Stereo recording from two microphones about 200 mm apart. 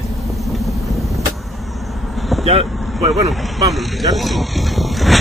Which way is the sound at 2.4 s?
30° right (ahead or behind).